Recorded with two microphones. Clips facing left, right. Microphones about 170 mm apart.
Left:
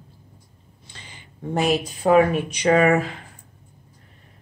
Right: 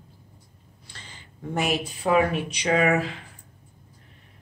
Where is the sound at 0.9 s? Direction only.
15° left (ahead or behind).